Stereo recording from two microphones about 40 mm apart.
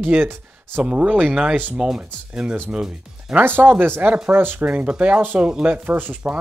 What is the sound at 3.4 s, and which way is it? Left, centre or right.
Speech, right.